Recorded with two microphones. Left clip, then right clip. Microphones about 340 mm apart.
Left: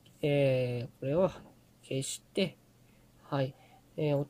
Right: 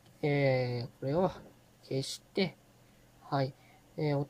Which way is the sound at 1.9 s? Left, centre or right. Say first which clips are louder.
Even; centre.